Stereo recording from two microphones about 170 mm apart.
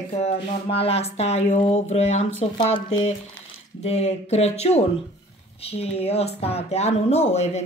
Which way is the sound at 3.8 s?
40° left (ahead or behind).